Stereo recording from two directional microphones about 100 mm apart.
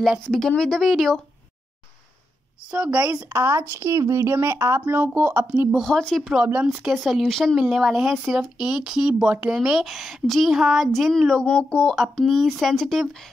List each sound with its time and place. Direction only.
0.3 s speech: 5° left (ahead or behind)
2.7 s speech: 10° right (ahead or behind)
3.7 s speech: 35° right (ahead or behind); by 5.8 s 15° right (ahead or behind)
5.8 s speech: 5° left (ahead or behind)
6.4 s speech: 10° right (ahead or behind)
7.0 s speech: centre (ahead or behind)